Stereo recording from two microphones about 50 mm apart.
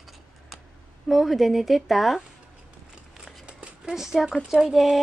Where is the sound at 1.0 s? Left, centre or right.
Centre.